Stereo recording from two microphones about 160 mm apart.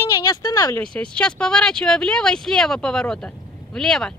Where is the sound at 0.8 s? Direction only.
5° left (ahead or behind).